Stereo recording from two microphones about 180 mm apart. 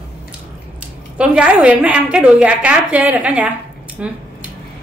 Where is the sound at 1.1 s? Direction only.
5° right (ahead or behind).